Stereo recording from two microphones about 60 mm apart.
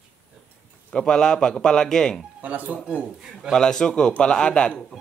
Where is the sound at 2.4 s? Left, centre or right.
Right.